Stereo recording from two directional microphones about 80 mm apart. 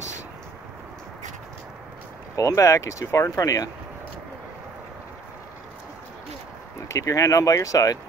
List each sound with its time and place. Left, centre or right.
2.3 s speech: left
6.9 s speech: left